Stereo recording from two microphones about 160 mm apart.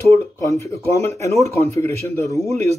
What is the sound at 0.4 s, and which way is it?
Speech, 20° left (ahead or behind).